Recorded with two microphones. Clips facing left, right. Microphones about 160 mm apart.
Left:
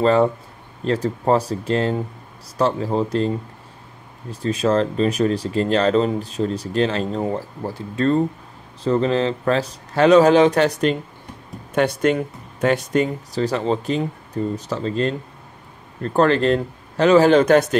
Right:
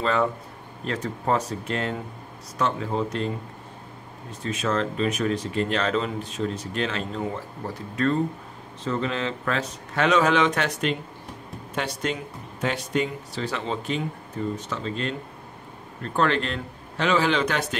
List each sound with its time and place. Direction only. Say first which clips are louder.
0.0 s speech: left 8 dB; 35° left (ahead or behind)
4.3 s speech: left 7 dB; 35° left (ahead or behind)
11.7 s speech: left 10 dB; 55° left (ahead or behind)